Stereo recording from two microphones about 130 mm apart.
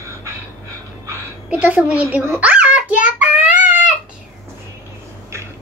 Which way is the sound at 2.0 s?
20° right (ahead or behind).